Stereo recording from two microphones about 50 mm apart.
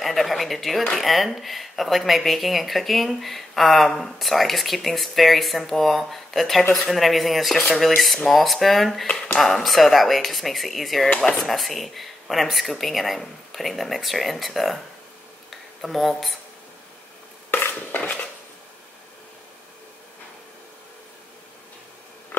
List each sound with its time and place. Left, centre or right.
0.0 s speech: centre
11.1 s speech: centre
11.4 s speech: centre
15.8 s speech: centre
17.5 s dishes: left
17.9 s dishes: left